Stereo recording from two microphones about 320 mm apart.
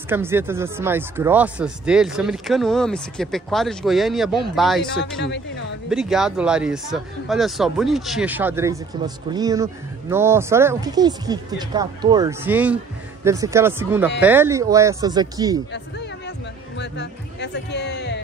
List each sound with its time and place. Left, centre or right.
0.1 s speech: centre
5.2 s speech: left
5.9 s speech: centre
15.7 s music: left